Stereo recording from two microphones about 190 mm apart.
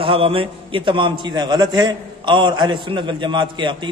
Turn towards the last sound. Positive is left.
turn(degrees=-25)  # may be behind; listen again after turning